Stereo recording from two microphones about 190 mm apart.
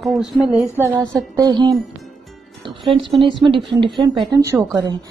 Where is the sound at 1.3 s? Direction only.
20° right (ahead or behind).